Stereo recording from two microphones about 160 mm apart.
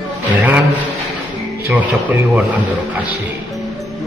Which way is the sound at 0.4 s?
10° right (ahead or behind).